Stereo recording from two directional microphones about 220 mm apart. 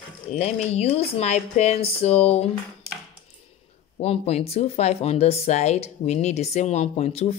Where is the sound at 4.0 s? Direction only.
30° left (ahead or behind).